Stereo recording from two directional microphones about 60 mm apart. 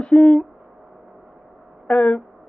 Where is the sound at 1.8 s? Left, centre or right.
Centre.